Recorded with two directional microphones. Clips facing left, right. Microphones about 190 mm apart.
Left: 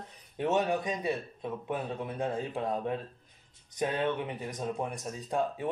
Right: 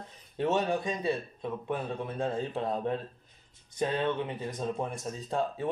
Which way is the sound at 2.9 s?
10° left (ahead or behind).